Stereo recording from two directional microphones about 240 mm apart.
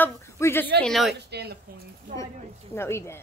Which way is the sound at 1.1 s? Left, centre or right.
Right.